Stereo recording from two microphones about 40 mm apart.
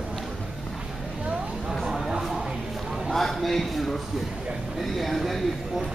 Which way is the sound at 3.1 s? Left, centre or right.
Centre.